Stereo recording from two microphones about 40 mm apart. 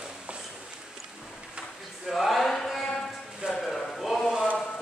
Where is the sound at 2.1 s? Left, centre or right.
Centre.